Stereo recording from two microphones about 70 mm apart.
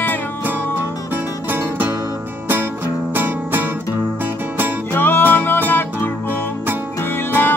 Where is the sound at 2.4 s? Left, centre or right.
Right.